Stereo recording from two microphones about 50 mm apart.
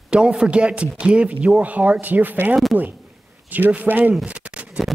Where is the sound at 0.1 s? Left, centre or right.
Centre; by 2.3 s right.